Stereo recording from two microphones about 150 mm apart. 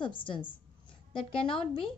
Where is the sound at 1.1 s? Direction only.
35° left (ahead or behind).